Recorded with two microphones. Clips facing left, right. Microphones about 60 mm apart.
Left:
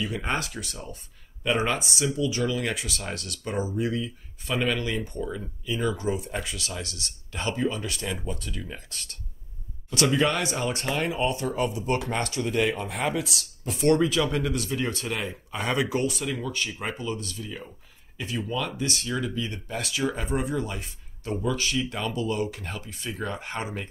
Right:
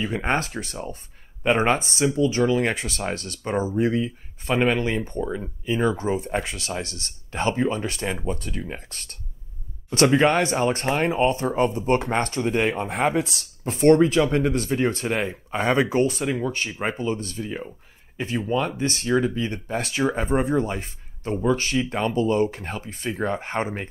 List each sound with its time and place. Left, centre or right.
0.0 s speech: right